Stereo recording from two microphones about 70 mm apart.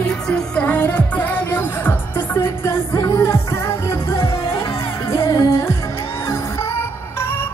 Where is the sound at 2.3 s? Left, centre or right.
Left.